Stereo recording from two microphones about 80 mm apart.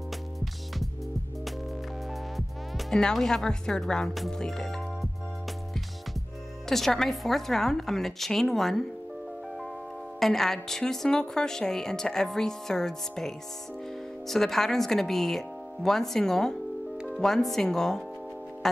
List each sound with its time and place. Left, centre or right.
2.3 s speech: centre
6.7 s speech: centre
10.2 s a woman's voice: centre